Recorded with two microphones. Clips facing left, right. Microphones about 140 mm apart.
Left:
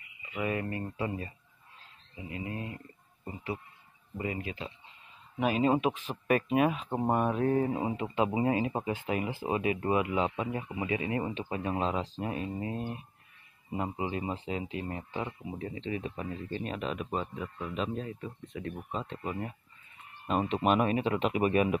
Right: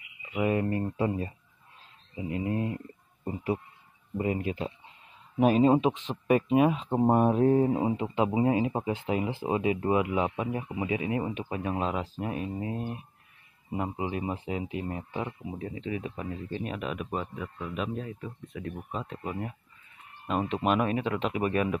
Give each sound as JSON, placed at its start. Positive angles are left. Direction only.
{"t": 0.3, "sound": "speech", "side_deg": -25}
{"t": 4.2, "sound": "speech", "side_deg": -45}
{"t": 5.6, "sound": "speech", "side_deg": -25}
{"t": 8.3, "sound": "speech", "side_deg": -5}
{"t": 8.5, "sound": "speech", "side_deg": -15}
{"t": 11.0, "sound": "speech", "side_deg": -5}